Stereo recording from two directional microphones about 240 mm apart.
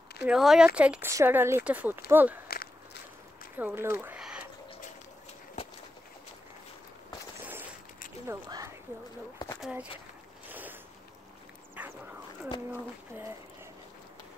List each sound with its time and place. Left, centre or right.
0.3 s speech: centre
2.4 s walk: left
3.5 s speech: centre
8.3 s speech: centre
10.5 s boat: centre
11.7 s dog: centre